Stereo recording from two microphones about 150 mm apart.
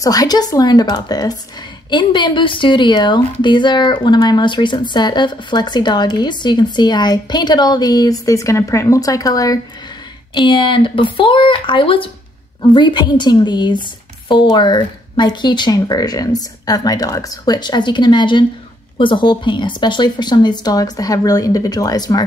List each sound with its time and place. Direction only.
0.0 s speech: 25° left (ahead or behind)